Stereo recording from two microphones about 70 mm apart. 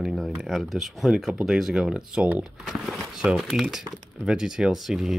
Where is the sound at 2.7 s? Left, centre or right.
Centre.